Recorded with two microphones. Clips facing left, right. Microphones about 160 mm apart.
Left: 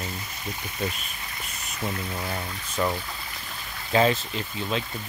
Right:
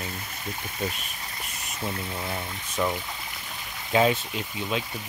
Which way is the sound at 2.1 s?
Centre (ahead or behind).